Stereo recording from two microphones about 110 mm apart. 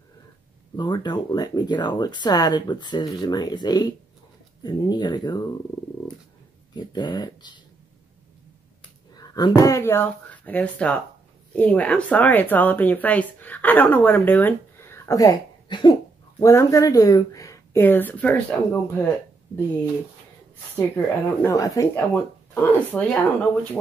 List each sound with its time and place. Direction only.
0.7 s speech: 40° left (ahead or behind)
6.7 s speech: 40° left (ahead or behind)
9.1 s speech: 35° left (ahead or behind)
15.7 s cough: 45° left (ahead or behind)
16.3 s speech: 30° left (ahead or behind)
17.7 s speech: 20° left (ahead or behind)
20.7 s speech: 20° left (ahead or behind)
21.9 s speech: 20° left (ahead or behind)